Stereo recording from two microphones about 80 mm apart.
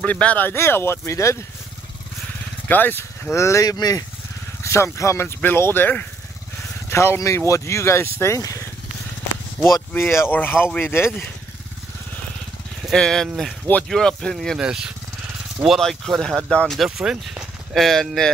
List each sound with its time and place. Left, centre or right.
0.0 s speech: centre; by 1.4 s left
2.7 s speech: left
3.6 s speech: left
4.6 s speech: left
6.9 s speech: left
9.9 s speech: left
12.9 s speech: centre
14.6 s speech: centre
17.0 s speech: centre